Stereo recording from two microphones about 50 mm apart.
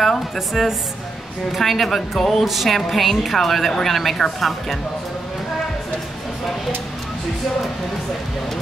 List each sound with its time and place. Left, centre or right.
0.6 s a woman's voice: centre